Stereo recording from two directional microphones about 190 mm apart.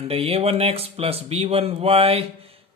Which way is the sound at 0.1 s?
30° right (ahead or behind).